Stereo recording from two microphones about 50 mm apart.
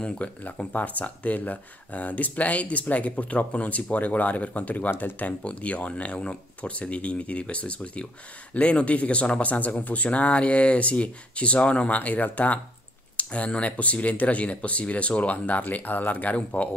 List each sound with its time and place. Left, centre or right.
0.0 s speech: left
5.4 s speech: left